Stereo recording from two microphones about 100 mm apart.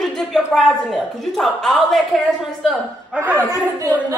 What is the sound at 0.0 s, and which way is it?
A woman's voice, 5° left (ahead or behind).